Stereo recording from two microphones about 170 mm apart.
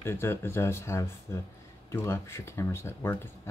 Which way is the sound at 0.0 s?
15° left (ahead or behind).